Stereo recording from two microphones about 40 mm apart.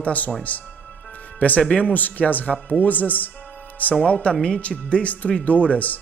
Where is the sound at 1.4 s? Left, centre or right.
Left.